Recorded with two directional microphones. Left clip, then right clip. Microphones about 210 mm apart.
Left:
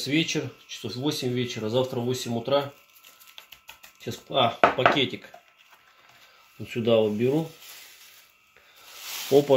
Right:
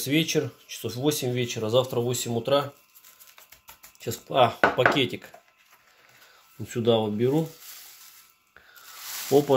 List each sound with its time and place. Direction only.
0.0 s speech: 55° right (ahead or behind)
4.0 s speech: 55° right (ahead or behind)
6.7 s speech: 50° right (ahead or behind)
9.3 s speech: 40° right (ahead or behind)